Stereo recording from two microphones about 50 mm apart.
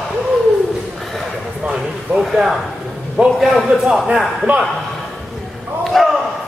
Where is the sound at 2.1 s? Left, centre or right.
Right.